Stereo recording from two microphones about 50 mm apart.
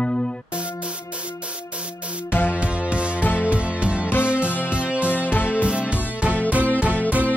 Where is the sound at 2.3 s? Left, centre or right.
Left.